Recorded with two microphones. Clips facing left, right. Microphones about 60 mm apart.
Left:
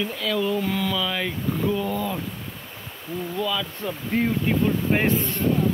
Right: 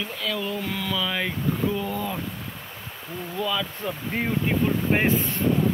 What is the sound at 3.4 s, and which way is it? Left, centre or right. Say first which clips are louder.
Speech: right 1 dB; centre.